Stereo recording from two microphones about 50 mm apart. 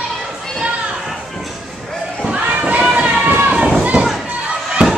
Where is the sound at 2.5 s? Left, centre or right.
Right.